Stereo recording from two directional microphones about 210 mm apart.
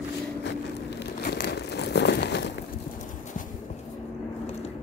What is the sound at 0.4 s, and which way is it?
Crumpling, 55° left (ahead or behind).